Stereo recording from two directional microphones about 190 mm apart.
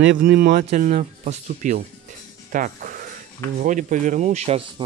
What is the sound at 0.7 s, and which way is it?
Speech, 40° right (ahead or behind).